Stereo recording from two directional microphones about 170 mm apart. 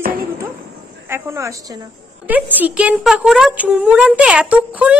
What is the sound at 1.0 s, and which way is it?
Speech, 15° right (ahead or behind).